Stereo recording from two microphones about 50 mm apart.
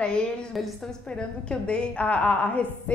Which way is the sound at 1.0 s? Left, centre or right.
Centre.